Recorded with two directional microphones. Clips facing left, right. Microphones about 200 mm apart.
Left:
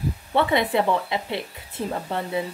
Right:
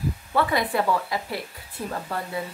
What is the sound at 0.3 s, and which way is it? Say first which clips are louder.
A woman's voice: left 3 dB; 25° left (ahead or behind).